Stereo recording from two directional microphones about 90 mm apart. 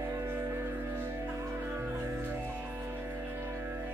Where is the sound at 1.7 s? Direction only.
25° right (ahead or behind).